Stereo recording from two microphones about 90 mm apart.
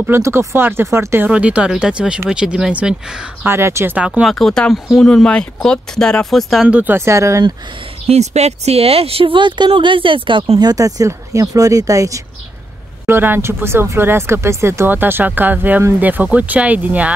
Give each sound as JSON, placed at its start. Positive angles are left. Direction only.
{"t": 0.2, "sound": "speech", "side_deg": -30}
{"t": 1.3, "sound": "speech", "side_deg": -15}
{"t": 3.4, "sound": "speech", "side_deg": -30}
{"t": 3.9, "sound": "speech", "side_deg": -15}
{"t": 4.2, "sound": "speech", "side_deg": 5}
{"t": 6.7, "sound": "speech", "side_deg": -20}
{"t": 7.0, "sound": "speech", "side_deg": -30}
{"t": 8.7, "sound": "speech", "side_deg": -90}
{"t": 10.6, "sound": "speech", "side_deg": -45}
{"t": 13.0, "sound": "speech", "side_deg": -25}